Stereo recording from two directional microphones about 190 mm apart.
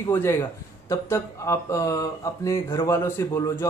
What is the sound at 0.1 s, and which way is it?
Speech, 15° left (ahead or behind).